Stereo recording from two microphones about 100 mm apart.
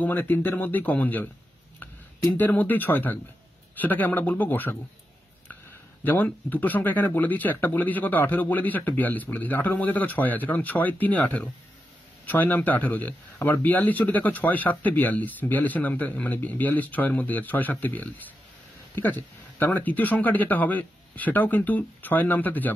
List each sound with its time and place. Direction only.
0.0 s a man's voice: 20° left (ahead or behind)
6.0 s a man's voice: 20° left (ahead or behind)